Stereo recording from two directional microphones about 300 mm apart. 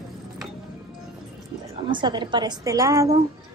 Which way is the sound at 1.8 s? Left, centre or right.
Centre.